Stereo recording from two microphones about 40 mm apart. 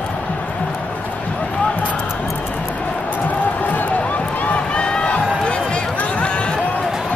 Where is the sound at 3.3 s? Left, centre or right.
Left.